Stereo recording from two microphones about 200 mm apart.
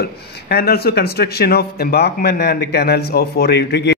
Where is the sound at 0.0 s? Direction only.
55° left (ahead or behind).